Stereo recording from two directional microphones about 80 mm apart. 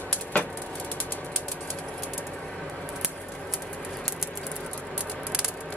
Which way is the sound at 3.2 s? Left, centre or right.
Centre.